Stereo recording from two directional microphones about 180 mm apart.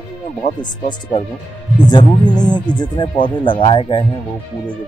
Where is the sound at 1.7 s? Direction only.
25° left (ahead or behind).